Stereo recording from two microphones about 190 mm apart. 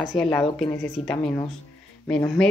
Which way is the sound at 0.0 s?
Centre (ahead or behind).